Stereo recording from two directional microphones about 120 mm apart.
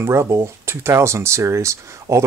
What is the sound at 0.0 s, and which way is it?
Speech, 20° right (ahead or behind).